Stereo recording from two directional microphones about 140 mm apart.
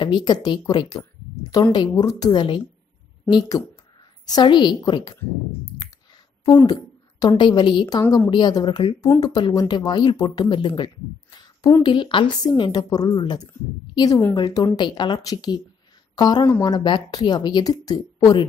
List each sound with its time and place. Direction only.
0.0 s a woman's voice: 30° left (ahead or behind)
6.4 s a woman's voice: 30° left (ahead or behind)